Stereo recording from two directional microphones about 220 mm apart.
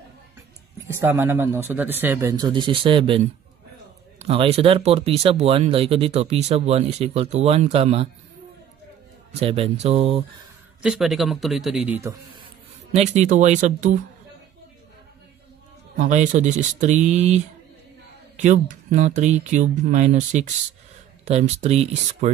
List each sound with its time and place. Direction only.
0.9 s speech: 10° right (ahead or behind)
4.2 s speech: 25° right (ahead or behind)
9.4 s speech: 25° right (ahead or behind)
10.8 s a man's voice: centre (ahead or behind)
12.9 s speech: 30° right (ahead or behind)
16.0 s speech: 30° right (ahead or behind)